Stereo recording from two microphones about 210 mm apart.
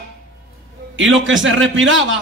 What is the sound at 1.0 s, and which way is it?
A man's voice, 65° right (ahead or behind).